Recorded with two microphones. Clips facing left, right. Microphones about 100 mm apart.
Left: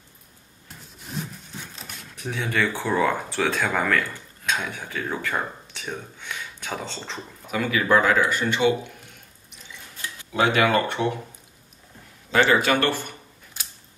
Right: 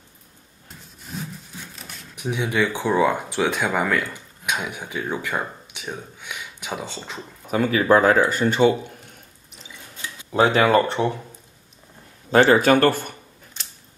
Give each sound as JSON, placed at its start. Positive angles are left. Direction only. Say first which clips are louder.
{"t": 1.0, "sound": "sawing", "louder": "even", "side_deg": 0}
{"t": 2.1, "sound": "speech", "louder": "right 3 dB", "side_deg": -15}
{"t": 7.5, "sound": "speech", "louder": "right 4 dB", "side_deg": -40}
{"t": 10.3, "sound": "speech", "louder": "right 4 dB", "side_deg": -30}
{"t": 12.3, "sound": "speech", "louder": "right 5 dB", "side_deg": -45}